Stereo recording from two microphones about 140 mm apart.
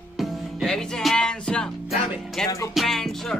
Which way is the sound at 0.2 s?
Centre (ahead or behind).